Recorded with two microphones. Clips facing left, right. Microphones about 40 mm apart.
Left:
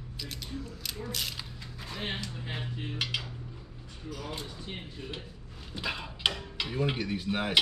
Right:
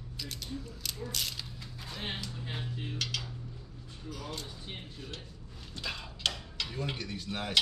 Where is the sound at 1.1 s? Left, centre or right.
Centre.